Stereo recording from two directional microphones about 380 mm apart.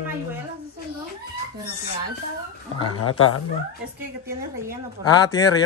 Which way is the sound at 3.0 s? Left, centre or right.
Left.